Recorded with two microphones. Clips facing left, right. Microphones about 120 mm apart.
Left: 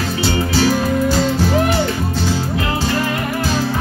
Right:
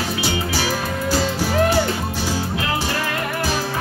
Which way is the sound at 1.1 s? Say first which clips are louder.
Left 4 dB; 15° right (ahead or behind).